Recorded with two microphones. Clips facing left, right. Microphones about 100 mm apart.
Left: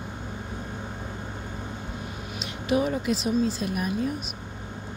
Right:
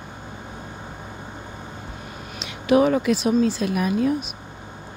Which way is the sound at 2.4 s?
85° right.